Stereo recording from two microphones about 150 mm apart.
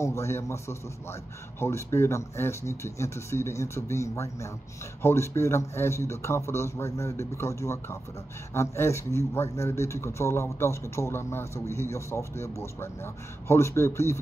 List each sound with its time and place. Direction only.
0.0 s a man's voice: 20° left (ahead or behind)